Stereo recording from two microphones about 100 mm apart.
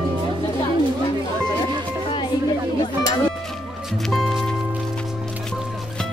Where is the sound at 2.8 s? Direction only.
45° left (ahead or behind).